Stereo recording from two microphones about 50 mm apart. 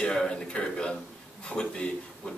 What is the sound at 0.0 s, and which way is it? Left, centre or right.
A man's voice, centre.